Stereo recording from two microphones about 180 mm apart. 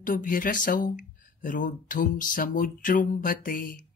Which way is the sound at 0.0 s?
50° left (ahead or behind).